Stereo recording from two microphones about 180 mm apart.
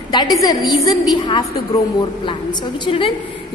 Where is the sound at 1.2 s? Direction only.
25° left (ahead or behind).